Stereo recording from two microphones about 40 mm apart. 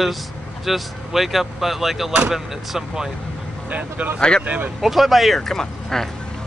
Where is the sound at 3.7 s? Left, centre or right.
Right.